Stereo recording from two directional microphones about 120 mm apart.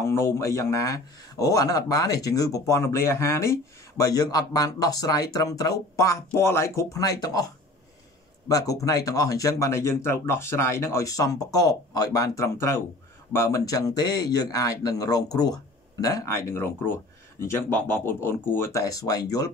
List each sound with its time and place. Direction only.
0.0 s speech: 25° left (ahead or behind)